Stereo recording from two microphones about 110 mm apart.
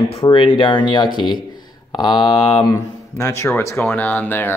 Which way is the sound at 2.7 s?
25° left (ahead or behind).